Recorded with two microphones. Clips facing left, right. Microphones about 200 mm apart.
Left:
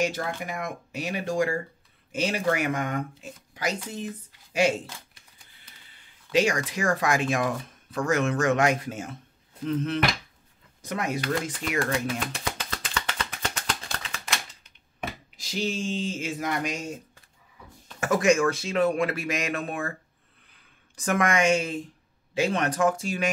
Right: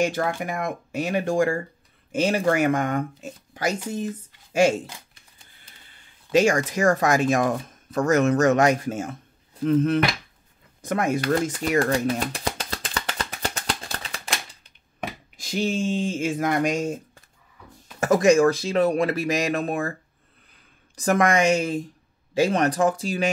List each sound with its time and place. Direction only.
0.0 s speech: 55° right (ahead or behind)
6.3 s speech: 45° right (ahead or behind)
10.8 s a sound: 50° right (ahead or behind); by 14.7 s 35° right (ahead or behind)
15.3 s speech: 50° right (ahead or behind)
18.0 s speech: 35° right (ahead or behind)
20.9 s speech: 35° right (ahead or behind)